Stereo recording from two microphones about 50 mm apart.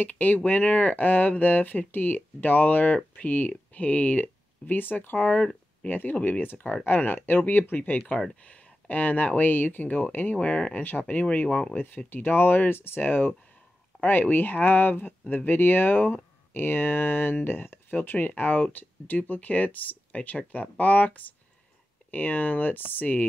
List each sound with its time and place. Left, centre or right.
0.0 s speech: left
5.4 s a sound: centre
5.9 s speech: left
8.4 s speech: left
10.3 s speech: left